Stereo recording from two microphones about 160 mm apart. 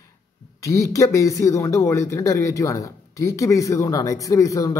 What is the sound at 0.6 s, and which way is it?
Speech, 20° left (ahead or behind).